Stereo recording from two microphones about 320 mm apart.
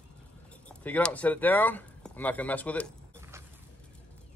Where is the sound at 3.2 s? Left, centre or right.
Centre.